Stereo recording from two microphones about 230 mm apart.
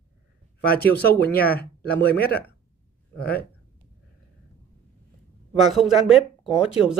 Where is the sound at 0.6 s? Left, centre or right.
Left.